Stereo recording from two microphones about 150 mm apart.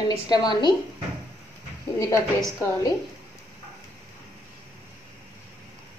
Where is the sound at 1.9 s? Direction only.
20° left (ahead or behind).